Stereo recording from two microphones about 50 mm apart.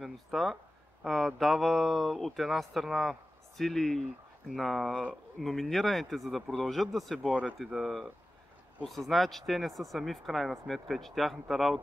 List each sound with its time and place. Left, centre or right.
0.0 s speech: centre